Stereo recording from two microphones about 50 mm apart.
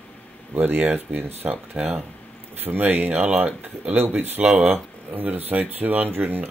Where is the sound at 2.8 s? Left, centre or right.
Right.